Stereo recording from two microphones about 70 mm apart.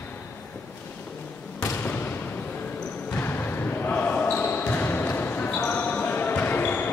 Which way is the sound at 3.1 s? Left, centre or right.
Left.